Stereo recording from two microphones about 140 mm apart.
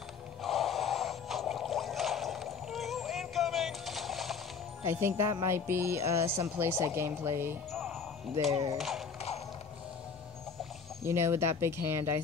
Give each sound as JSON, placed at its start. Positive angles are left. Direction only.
{"t": 0.4, "sound": "music", "side_deg": 0}
{"t": 4.8, "sound": "speech", "side_deg": -20}
{"t": 7.7, "sound": "music", "side_deg": 0}
{"t": 8.4, "sound": "speech", "side_deg": -50}
{"t": 8.7, "sound": "speech", "side_deg": 0}
{"t": 11.1, "sound": "speech", "side_deg": -20}